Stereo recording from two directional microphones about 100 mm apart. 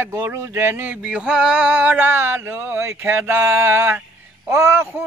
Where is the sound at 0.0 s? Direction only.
20° right (ahead or behind).